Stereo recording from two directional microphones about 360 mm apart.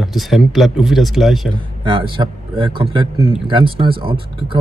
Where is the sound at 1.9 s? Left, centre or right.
Centre.